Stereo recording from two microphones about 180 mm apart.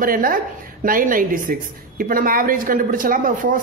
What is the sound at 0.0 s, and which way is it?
A woman's voice, 55° right (ahead or behind).